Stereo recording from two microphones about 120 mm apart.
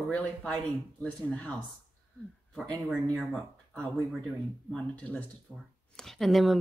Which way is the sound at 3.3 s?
5° left (ahead or behind).